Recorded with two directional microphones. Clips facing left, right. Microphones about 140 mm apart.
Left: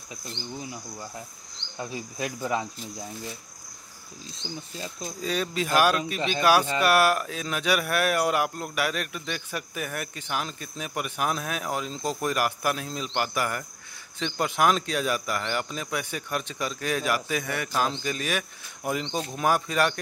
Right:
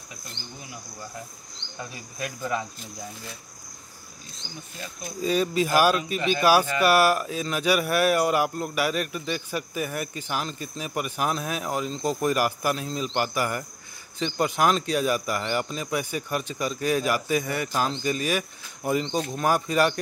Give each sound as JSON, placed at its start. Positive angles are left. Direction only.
{"t": 1.9, "sound": "speech", "side_deg": 25}
{"t": 5.2, "sound": "speech", "side_deg": -5}